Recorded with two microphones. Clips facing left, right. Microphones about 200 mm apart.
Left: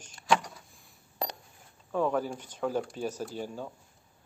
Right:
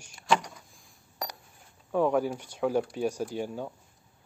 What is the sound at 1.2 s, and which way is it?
Coin, 25° left (ahead or behind).